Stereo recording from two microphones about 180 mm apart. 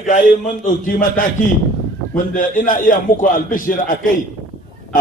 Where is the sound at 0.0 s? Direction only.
45° left (ahead or behind).